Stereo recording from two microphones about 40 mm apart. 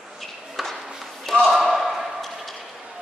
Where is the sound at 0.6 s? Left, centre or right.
Centre.